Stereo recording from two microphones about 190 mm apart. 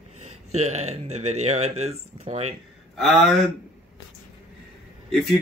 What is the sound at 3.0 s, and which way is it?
Speech, centre (ahead or behind).